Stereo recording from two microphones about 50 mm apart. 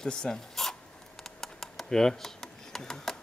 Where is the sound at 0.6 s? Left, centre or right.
Centre.